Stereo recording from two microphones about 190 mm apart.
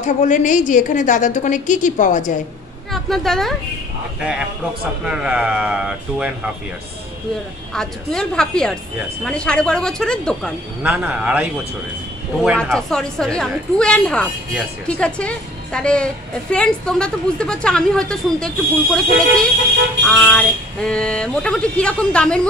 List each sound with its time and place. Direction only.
0.0 s a woman's voice: 40° left (ahead or behind)
2.9 s speech: centre (ahead or behind)
5.0 s a woman's voice: 5° right (ahead or behind)
7.7 s a woman's voice: 5° left (ahead or behind)
10.8 s a man's voice: 5° right (ahead or behind)
12.7 s a woman's voice: 5° left (ahead or behind)